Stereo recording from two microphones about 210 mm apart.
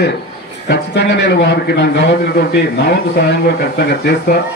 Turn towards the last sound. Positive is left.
turn(degrees=50)  # may be behind; listen again after turning